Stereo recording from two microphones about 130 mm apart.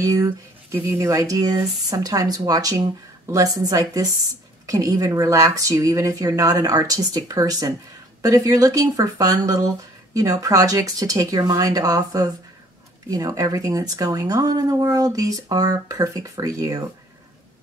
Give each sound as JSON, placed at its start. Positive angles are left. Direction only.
{"t": 0.0, "sound": "speech", "side_deg": -25}